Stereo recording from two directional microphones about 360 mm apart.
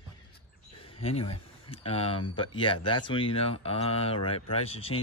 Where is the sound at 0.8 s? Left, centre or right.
Centre.